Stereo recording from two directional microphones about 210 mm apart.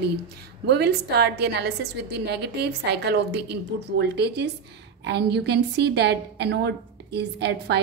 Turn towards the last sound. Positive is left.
turn(degrees=-55)  # may be behind; listen again after turning